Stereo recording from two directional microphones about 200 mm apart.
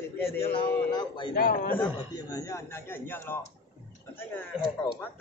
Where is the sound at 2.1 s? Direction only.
15° left (ahead or behind).